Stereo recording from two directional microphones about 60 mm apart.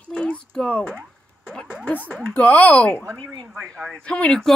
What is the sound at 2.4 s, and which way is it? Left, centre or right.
Speech, left.